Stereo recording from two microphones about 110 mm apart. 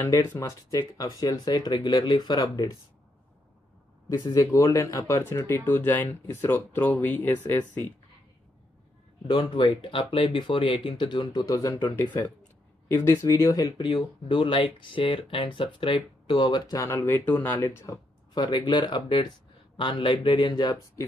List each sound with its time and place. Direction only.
0.0 s speech: 25° left (ahead or behind)
4.2 s speech: 35° left (ahead or behind)
9.3 s speech: 45° left (ahead or behind)
11.9 s speech: 20° left (ahead or behind); by 16.8 s 40° left (ahead or behind)
16.8 s speech: 25° left (ahead or behind)
18.3 s speech: 40° left (ahead or behind)